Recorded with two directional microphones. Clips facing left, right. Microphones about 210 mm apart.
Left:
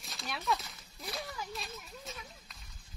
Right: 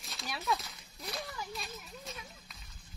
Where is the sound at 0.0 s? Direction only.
Centre (ahead or behind).